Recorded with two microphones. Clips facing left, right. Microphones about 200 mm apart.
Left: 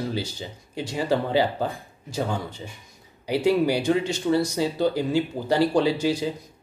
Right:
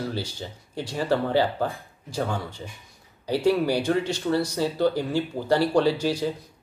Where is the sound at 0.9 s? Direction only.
15° left (ahead or behind).